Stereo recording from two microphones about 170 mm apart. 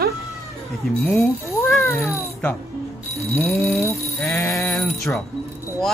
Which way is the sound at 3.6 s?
Centre (ahead or behind).